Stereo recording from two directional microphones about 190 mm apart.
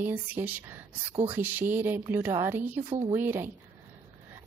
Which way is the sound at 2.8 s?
25° right (ahead or behind).